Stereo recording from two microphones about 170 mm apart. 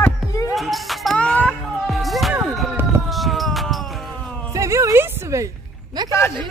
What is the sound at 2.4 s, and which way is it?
Emergency vehicle, centre (ahead or behind).